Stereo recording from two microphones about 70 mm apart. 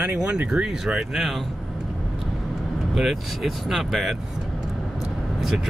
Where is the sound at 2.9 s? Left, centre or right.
Centre.